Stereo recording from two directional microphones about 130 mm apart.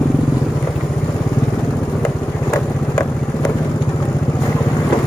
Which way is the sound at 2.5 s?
25° left (ahead or behind).